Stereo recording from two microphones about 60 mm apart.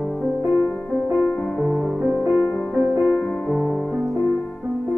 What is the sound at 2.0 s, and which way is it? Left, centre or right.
Music, right.